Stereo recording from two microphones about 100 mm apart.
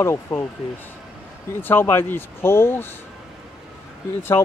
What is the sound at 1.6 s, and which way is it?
Speech, 20° left (ahead or behind).